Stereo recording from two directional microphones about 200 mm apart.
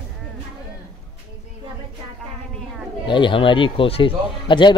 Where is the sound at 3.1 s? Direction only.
25° left (ahead or behind).